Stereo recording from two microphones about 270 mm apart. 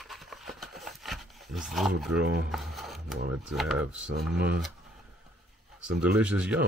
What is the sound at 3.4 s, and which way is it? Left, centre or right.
Speech, centre.